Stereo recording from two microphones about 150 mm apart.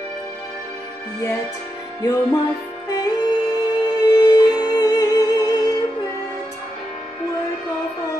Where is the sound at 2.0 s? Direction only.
25° left (ahead or behind).